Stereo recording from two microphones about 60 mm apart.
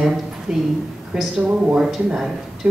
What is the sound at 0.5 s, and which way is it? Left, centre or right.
Speech, centre.